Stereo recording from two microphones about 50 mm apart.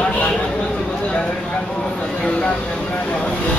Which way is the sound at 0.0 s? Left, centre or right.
Left.